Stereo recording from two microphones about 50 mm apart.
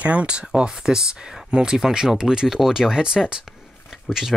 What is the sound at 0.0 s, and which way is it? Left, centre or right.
Speech, right.